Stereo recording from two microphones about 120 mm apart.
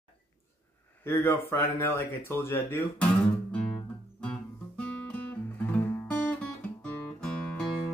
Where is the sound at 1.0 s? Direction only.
20° left (ahead or behind).